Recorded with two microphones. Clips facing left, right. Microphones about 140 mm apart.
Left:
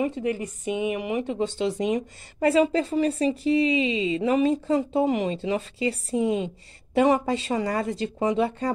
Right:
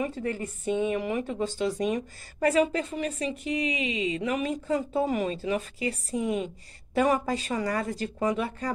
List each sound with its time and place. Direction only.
0.0 s speech: 20° left (ahead or behind)